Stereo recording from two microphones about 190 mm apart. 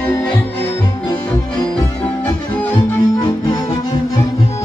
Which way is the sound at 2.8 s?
25° left (ahead or behind).